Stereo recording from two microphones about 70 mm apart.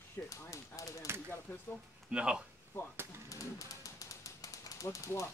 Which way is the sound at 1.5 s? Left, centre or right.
Left.